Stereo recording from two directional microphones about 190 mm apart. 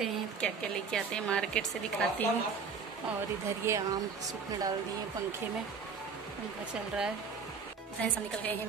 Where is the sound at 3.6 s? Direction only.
15° right (ahead or behind).